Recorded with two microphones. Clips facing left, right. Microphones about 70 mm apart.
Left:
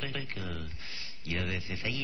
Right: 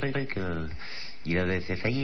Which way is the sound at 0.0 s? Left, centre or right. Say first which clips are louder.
Right 8 dB; right.